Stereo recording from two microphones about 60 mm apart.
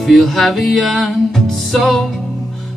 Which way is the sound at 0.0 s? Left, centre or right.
Centre.